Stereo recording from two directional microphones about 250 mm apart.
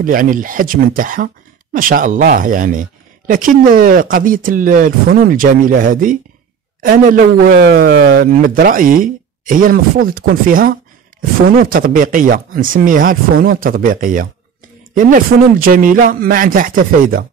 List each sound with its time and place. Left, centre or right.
0.0 s a man's voice: right